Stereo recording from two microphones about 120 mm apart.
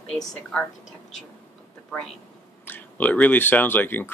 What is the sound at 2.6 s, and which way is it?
Speech, 15° left (ahead or behind).